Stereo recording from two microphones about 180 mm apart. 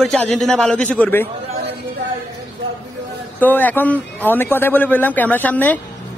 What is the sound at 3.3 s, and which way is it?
Speech, 10° left (ahead or behind).